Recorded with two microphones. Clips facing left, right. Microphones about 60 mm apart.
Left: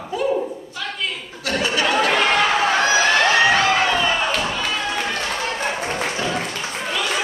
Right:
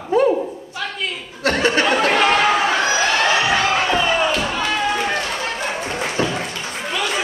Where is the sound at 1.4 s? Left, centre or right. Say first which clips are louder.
Right 4 dB; right.